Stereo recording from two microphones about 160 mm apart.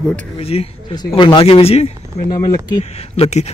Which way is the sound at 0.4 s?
35° left (ahead or behind).